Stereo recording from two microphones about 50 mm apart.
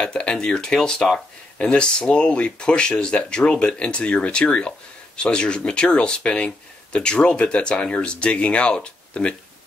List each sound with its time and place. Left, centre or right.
0.0 s speech: centre